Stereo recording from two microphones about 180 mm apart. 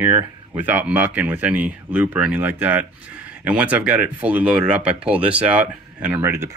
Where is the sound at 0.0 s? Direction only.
10° right (ahead or behind).